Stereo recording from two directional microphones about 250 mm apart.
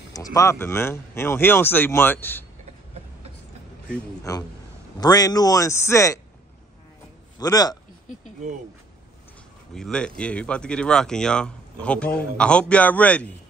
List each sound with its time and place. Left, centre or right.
0.1 s speech: centre
4.2 s speech: centre
7.3 s a man's voice: centre
9.8 s speech: centre